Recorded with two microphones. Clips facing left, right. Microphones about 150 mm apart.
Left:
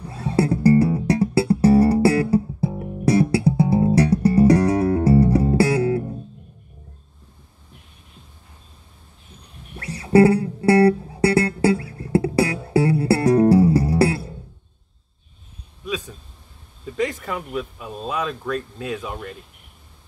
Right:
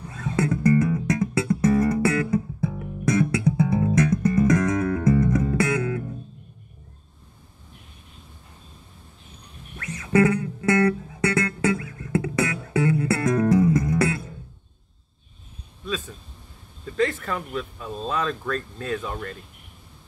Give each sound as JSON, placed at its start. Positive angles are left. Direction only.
{"t": 0.1, "sound": "music", "side_deg": 35}
{"t": 9.8, "sound": "music", "side_deg": 35}
{"t": 15.8, "sound": "a sound", "side_deg": 10}